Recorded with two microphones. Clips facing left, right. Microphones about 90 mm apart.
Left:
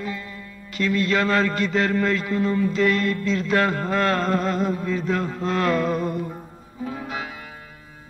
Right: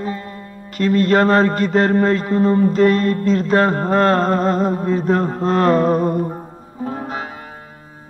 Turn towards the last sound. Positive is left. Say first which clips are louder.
# right 5 dB
turn(degrees=-45)  # may be behind; listen again after turning